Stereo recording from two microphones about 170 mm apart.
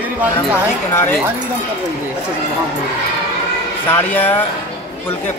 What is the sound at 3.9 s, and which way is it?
Speech, 10° left (ahead or behind).